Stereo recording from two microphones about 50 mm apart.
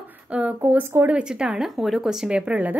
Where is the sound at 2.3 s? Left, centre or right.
Right.